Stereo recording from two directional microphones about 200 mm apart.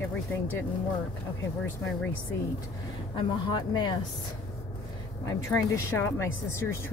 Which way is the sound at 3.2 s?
25° left (ahead or behind).